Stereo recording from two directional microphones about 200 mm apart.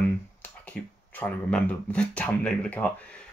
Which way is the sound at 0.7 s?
45° right (ahead or behind).